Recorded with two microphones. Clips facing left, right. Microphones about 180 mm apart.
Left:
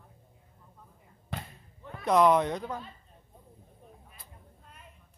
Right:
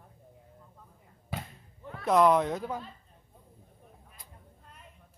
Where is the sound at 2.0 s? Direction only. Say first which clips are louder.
Even; centre (ahead or behind).